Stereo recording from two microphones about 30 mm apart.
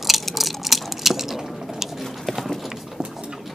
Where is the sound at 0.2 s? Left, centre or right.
Centre.